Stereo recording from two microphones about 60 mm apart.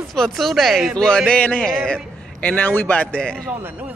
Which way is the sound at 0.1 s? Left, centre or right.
Centre.